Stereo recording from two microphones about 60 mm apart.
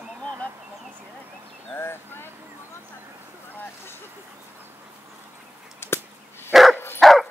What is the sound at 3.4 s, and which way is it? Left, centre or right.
Speech, left.